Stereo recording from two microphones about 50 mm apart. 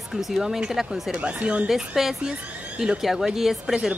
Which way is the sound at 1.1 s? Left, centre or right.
Right.